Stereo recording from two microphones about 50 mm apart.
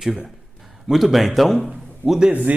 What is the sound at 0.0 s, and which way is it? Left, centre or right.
A man's voice, centre.